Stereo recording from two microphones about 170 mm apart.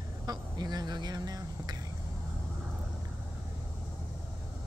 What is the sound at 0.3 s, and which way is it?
Speech, 25° right (ahead or behind).